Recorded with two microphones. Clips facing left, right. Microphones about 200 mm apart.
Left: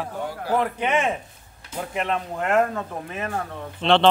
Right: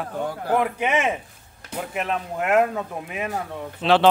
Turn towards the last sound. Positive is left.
turn(degrees=-5)  # may be behind; listen again after turning